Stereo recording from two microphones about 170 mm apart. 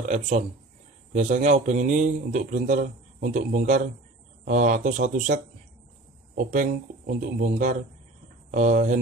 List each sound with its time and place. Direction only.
0.1 s a man's voice: 45° right (ahead or behind)